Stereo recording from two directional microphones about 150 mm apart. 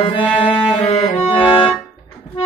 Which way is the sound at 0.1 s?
35° left (ahead or behind).